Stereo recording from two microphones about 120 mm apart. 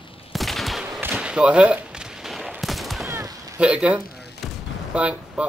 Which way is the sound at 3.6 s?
10° right (ahead or behind).